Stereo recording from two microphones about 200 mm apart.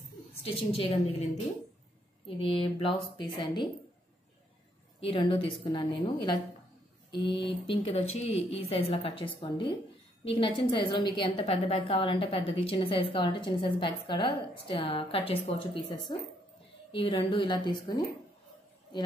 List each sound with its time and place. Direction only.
0.4 s a woman's voice: 30° left (ahead or behind)
2.2 s a woman's voice: 25° left (ahead or behind)
5.0 s a woman's voice: 25° left (ahead or behind)